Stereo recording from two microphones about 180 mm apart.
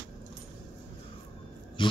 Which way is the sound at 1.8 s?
30° left (ahead or behind).